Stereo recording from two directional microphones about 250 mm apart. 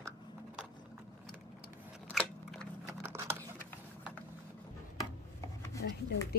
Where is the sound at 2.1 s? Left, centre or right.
Centre.